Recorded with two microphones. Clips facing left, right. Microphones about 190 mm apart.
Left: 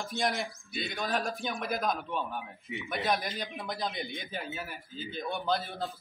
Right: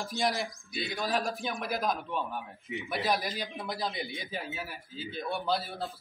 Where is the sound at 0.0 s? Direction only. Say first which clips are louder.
Right 1 dB; centre (ahead or behind).